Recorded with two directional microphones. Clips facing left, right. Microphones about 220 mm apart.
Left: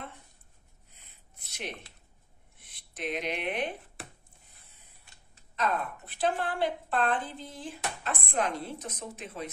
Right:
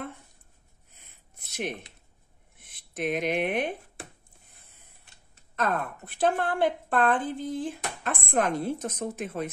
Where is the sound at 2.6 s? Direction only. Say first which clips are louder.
Right 6 dB; 50° right (ahead or behind).